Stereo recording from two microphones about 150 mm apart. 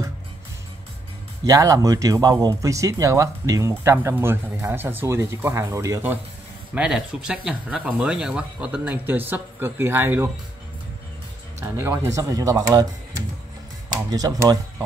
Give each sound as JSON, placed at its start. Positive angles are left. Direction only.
{"t": 1.4, "sound": "speech", "side_deg": -20}
{"t": 6.7, "sound": "speech", "side_deg": -5}
{"t": 11.6, "sound": "speech", "side_deg": -15}